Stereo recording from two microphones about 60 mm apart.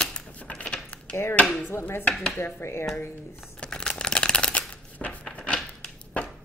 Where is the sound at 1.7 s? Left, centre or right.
Left.